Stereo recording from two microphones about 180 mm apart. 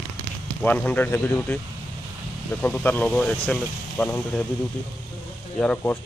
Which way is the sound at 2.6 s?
10° left (ahead or behind).